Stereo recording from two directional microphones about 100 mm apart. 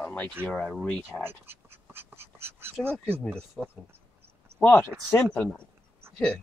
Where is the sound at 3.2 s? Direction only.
10° left (ahead or behind).